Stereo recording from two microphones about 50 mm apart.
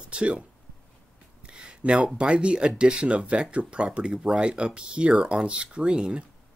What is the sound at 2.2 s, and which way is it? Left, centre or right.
Speech, right.